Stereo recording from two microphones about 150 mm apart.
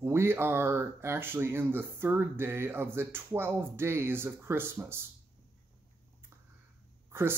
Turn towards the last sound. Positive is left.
turn(degrees=-15)  # may be behind; listen again after turning